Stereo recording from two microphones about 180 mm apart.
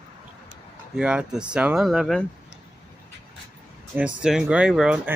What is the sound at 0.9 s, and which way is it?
Speech, 5° right (ahead or behind).